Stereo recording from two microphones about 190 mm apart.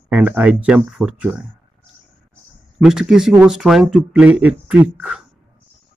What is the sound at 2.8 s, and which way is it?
A man's voice, 5° right (ahead or behind).